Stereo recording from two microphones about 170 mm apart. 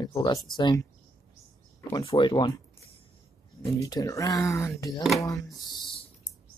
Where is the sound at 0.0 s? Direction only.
20° left (ahead or behind).